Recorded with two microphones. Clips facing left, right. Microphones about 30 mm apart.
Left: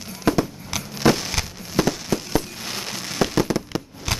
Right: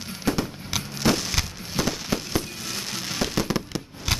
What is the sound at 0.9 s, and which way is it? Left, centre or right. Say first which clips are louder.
Fireworks: left 4 dB; centre.